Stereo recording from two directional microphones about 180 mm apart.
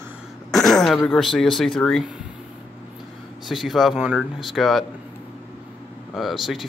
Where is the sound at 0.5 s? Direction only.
Centre (ahead or behind).